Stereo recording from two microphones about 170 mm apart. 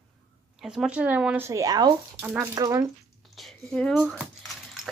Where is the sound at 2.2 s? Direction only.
10° right (ahead or behind).